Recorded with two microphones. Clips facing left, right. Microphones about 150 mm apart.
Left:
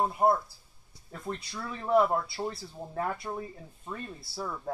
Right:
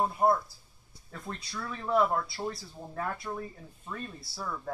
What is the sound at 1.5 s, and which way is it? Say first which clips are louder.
Speech: left 3 dB; 20° left (ahead or behind).